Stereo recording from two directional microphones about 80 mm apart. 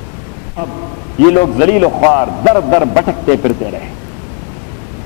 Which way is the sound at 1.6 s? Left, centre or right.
Centre.